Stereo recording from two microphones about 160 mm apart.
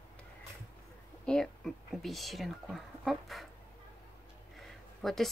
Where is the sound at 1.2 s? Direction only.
5° left (ahead or behind).